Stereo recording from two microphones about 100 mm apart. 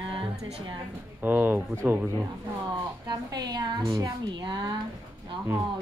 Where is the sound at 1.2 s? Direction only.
15° right (ahead or behind).